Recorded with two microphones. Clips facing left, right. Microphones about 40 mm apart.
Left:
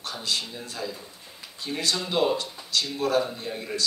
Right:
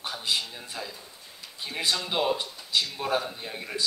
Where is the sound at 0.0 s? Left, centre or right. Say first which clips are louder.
Even; centre.